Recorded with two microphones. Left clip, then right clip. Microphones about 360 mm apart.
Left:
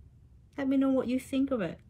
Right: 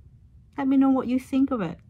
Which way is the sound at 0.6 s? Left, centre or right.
Centre.